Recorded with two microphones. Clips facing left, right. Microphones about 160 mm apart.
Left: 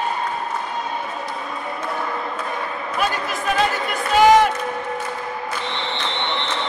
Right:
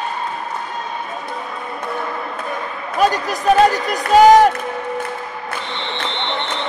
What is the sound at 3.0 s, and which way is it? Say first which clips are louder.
Speech: right 7 dB; 40° right (ahead or behind).